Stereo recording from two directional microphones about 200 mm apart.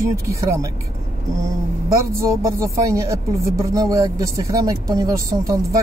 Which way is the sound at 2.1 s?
15° right (ahead or behind).